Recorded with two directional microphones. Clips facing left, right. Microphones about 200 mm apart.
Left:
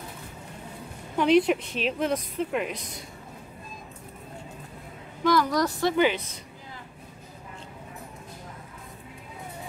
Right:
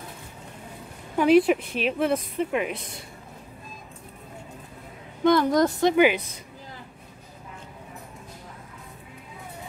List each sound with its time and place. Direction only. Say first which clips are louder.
1.1 s speech: right 3 dB; 5° right (ahead or behind)
5.2 s a woman's voice: right 4 dB; 25° right (ahead or behind)